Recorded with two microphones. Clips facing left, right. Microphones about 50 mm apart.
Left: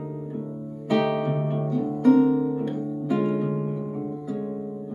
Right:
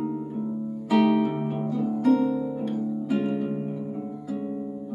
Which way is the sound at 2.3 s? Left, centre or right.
Centre.